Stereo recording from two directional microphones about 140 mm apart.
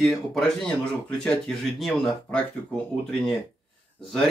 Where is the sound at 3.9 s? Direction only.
5° left (ahead or behind).